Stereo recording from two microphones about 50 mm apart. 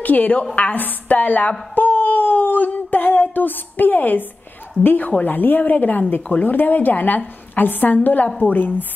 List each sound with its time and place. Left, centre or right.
0.0 s a woman's voice: left
1.8 s a sound: left
4.8 s a woman's voice: left